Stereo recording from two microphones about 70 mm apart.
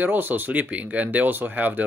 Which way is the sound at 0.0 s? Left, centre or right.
Right.